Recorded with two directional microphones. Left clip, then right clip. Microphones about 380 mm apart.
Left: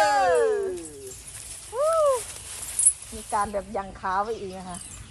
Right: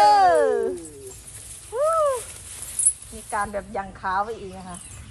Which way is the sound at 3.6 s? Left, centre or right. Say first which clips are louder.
Right 1 dB; left.